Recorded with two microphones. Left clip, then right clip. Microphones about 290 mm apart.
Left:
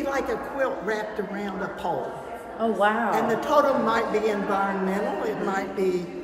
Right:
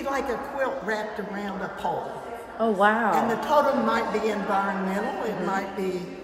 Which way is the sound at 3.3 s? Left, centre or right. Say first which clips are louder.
Left 1 dB; centre.